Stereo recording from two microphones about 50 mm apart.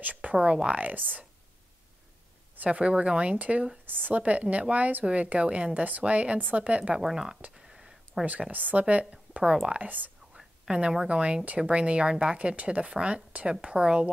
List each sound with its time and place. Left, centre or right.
0.0 s speech: right
2.5 s speech: right
7.0 s speech: centre
7.5 s a sound: centre
8.3 s speech: right
9.8 s speech: right
10.7 s speech: centre